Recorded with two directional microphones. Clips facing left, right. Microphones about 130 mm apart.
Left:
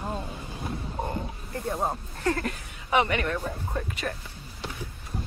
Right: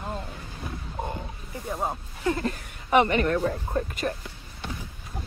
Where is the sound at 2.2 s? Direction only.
15° right (ahead or behind).